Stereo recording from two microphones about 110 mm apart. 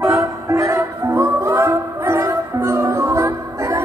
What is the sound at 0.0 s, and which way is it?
Music, 30° right (ahead or behind).